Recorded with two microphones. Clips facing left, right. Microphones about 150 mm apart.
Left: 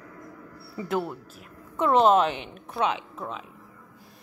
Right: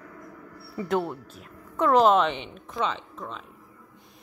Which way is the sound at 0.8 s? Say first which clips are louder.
Right 2 dB; 5° left (ahead or behind).